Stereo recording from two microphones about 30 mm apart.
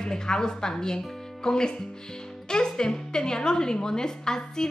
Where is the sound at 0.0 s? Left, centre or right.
Left.